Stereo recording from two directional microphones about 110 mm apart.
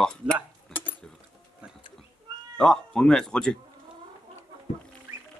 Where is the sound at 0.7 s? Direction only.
15° left (ahead or behind).